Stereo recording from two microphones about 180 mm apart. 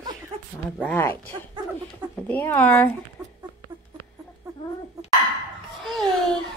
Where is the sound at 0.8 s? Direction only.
10° left (ahead or behind).